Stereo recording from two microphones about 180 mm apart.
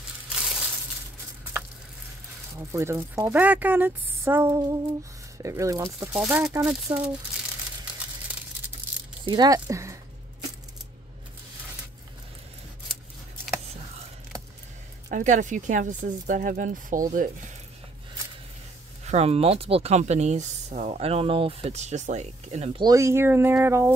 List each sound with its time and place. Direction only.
0.3 s crushing: centre (ahead or behind)
2.5 s speech: 15° right (ahead or behind)
9.2 s speech: 25° right (ahead or behind)
15.0 s speech: 45° right (ahead or behind)
19.0 s speech: 35° right (ahead or behind)
22.8 s speech: 20° right (ahead or behind)